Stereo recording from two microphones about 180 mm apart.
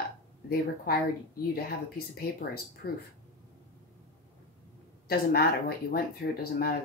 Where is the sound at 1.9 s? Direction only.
60° left (ahead or behind).